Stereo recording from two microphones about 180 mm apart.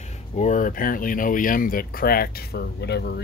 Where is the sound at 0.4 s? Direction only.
45° left (ahead or behind).